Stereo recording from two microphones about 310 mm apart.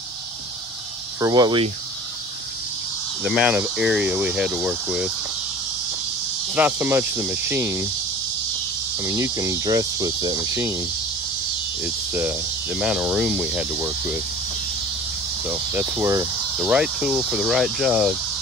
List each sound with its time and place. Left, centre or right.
1.2 s speech: centre
3.3 s speech: centre
6.5 s speech: centre
9.0 s speech: centre
12.1 s speech: centre
15.4 s speech: centre